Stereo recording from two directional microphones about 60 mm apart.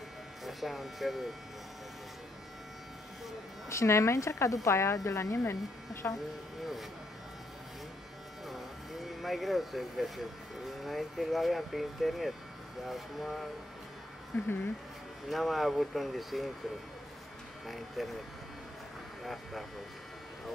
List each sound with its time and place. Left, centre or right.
0.4 s speech: centre
3.6 s speech: left
6.0 s speech: left
6.6 s a sound: centre
9.2 s speech: centre
15.2 s speech: centre
17.6 s speech: centre